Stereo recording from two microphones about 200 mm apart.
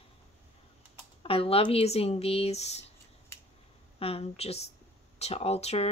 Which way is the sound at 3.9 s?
30° left (ahead or behind).